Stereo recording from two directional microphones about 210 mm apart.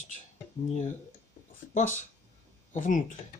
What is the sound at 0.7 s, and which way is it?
Speech, 35° left (ahead or behind).